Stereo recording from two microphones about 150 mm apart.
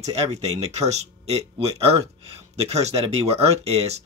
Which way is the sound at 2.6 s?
45° right (ahead or behind).